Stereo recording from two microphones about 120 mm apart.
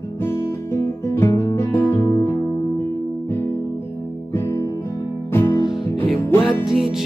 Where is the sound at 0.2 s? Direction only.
20° left (ahead or behind).